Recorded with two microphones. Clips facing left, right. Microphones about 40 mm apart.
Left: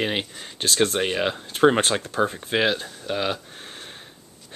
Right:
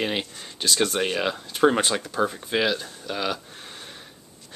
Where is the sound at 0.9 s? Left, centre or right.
Centre.